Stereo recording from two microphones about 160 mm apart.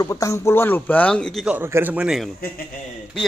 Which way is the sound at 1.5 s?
15° right (ahead or behind).